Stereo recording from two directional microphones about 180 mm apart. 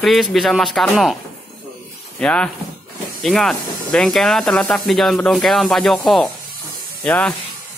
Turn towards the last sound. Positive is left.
turn(degrees=10)  # may be behind; listen again after turning